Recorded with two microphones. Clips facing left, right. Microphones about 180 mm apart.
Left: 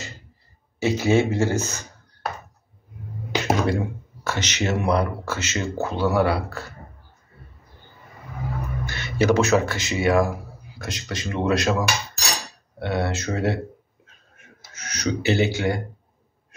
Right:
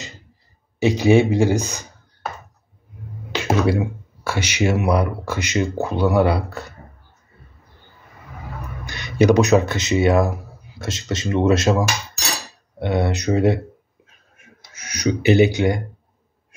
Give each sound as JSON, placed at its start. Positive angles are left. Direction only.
{"t": 0.7, "sound": "speech", "side_deg": -15}
{"t": 3.6, "sound": "speech", "side_deg": -10}
{"t": 8.8, "sound": "speech", "side_deg": -15}
{"t": 12.7, "sound": "speech", "side_deg": -20}
{"t": 14.7, "sound": "speech", "side_deg": -10}